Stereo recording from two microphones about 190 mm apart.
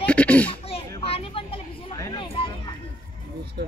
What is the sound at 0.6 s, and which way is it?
Speech, 30° left (ahead or behind).